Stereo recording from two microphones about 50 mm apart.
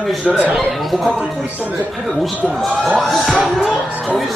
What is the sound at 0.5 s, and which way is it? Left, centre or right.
Speech, centre.